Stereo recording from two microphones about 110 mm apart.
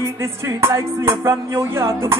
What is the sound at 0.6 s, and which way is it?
Music, 25° right (ahead or behind).